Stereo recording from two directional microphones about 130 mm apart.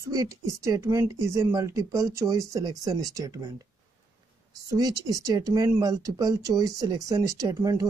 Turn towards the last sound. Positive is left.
turn(degrees=-25)  # may be behind; listen again after turning